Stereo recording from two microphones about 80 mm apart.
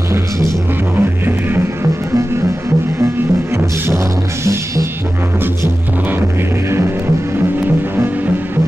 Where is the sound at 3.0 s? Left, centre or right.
Right.